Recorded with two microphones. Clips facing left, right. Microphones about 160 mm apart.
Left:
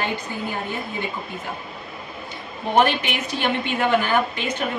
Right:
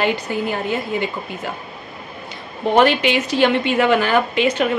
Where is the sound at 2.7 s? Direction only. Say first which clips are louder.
Right 5 dB; 90° right.